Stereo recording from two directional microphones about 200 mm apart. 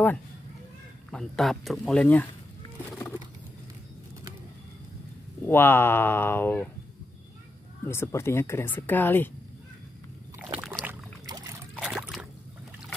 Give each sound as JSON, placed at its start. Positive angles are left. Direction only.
{"t": 1.1, "sound": "speech", "side_deg": 0}
{"t": 5.5, "sound": "speech", "side_deg": 10}
{"t": 7.8, "sound": "speech", "side_deg": 10}
{"t": 10.6, "sound": "rowboat", "side_deg": -5}
{"t": 11.2, "sound": "boat", "side_deg": -20}
{"t": 11.7, "sound": "a sound", "side_deg": -5}